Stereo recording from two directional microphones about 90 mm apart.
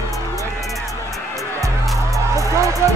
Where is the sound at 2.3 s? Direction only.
35° right (ahead or behind).